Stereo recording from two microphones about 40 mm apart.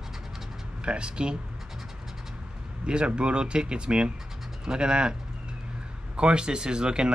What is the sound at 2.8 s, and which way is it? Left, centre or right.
Speech, right.